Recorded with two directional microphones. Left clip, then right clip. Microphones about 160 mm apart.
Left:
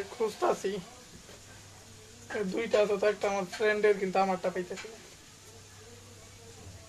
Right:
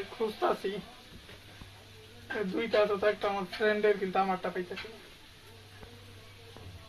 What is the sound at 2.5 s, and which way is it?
Speech, 20° left (ahead or behind).